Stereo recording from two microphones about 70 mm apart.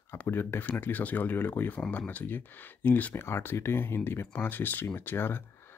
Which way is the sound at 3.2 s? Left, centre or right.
Left.